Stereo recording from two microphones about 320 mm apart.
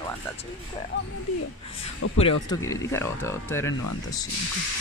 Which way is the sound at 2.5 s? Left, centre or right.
Centre.